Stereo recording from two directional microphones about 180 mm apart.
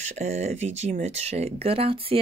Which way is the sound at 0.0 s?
40° right (ahead or behind).